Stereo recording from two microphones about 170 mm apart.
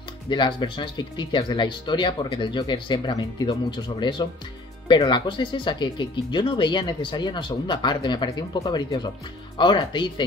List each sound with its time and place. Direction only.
0.3 s speech: 30° left (ahead or behind)